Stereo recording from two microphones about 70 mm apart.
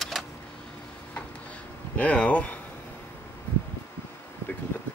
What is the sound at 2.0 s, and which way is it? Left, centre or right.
Speech, centre.